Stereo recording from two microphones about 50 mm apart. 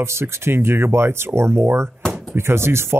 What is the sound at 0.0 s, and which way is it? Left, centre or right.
Speech, right.